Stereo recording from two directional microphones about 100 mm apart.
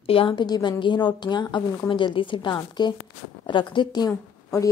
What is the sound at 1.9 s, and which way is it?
A woman's voice, 60° left (ahead or behind).